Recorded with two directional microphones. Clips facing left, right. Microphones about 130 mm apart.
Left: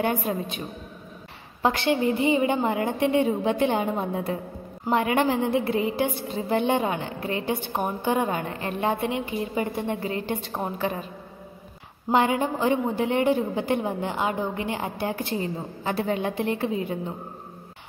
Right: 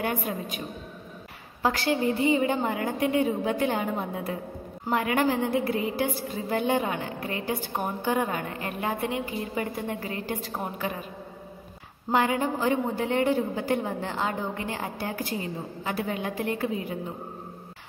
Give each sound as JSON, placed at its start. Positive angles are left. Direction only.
{"t": 0.0, "sound": "a woman's voice", "side_deg": 25}
{"t": 1.6, "sound": "a woman's voice", "side_deg": 25}
{"t": 12.1, "sound": "a woman's voice", "side_deg": 20}